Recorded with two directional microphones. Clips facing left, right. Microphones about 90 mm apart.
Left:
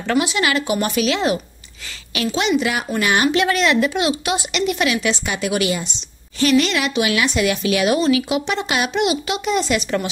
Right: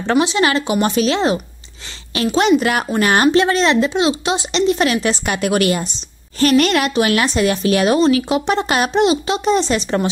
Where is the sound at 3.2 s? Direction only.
30° right (ahead or behind).